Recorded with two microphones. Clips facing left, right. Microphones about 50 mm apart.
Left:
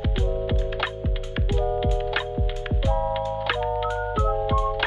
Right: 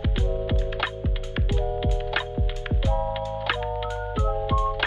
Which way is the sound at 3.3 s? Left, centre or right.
Centre.